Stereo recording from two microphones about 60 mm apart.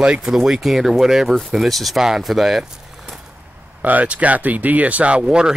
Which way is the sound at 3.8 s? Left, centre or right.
Right.